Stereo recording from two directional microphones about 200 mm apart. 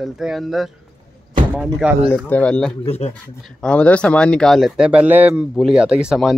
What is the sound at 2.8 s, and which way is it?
Speech, 30° left (ahead or behind).